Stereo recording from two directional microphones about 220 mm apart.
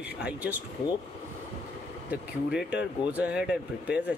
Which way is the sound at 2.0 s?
5° right (ahead or behind).